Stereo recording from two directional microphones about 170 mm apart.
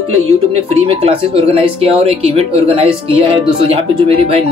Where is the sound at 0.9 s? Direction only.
35° right (ahead or behind).